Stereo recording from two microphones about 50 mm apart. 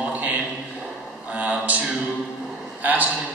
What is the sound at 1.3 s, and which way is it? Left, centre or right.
Speech, right.